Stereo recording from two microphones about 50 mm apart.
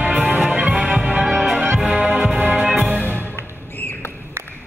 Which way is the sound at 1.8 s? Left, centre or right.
Centre.